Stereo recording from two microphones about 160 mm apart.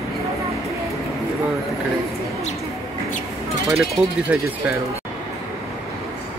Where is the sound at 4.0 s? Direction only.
5° right (ahead or behind).